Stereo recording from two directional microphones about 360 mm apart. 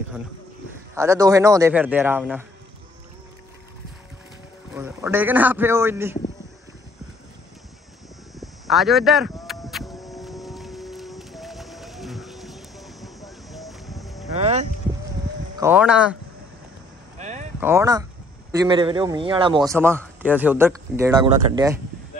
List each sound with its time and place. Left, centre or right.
0.9 s speech: centre
4.7 s a man's voice: centre
8.4 s speech: centre
9.5 s music: centre
14.4 s a sound: centre
15.5 s speech: centre
17.2 s a sound: centre
17.6 s speech: centre